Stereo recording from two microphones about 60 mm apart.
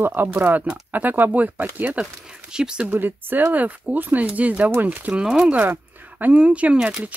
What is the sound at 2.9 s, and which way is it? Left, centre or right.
Speech, right.